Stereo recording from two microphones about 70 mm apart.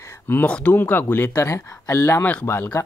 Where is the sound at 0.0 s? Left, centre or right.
Left.